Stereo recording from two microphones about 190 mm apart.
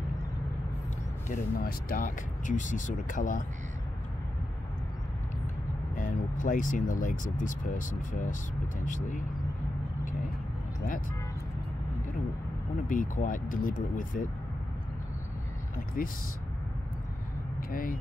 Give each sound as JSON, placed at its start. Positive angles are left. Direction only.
{"t": 1.3, "sound": "speech", "side_deg": 50}
{"t": 5.9, "sound": "speech", "side_deg": 45}
{"t": 12.8, "sound": "speech", "side_deg": 45}
{"t": 16.0, "sound": "speech", "side_deg": 50}
{"t": 17.6, "sound": "speech", "side_deg": 45}